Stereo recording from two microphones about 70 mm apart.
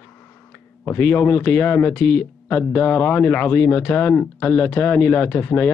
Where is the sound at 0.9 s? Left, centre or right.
Left.